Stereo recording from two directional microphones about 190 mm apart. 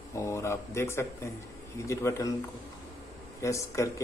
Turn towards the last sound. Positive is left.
turn(degrees=15)  # may be behind; listen again after turning